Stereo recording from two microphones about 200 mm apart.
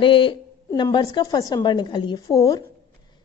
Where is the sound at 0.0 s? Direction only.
25° left (ahead or behind).